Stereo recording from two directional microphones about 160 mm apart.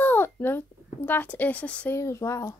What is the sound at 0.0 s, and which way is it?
A child's voice, 15° left (ahead or behind).